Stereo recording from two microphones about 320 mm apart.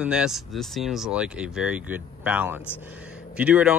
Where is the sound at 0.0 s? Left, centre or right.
Centre.